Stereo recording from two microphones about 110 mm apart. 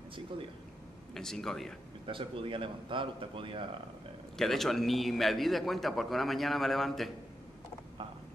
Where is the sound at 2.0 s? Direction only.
50° right (ahead or behind).